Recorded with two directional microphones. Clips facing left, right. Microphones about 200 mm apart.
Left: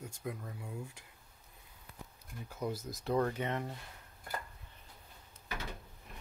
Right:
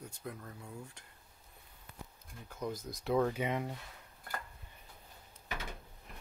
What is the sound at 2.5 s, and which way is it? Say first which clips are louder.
Speech: left 1 dB; 10° left (ahead or behind).